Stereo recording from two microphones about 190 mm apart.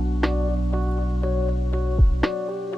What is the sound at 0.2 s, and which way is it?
Music, centre (ahead or behind).